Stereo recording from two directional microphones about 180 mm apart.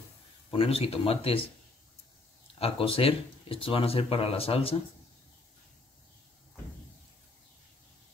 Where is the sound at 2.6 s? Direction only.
30° left (ahead or behind).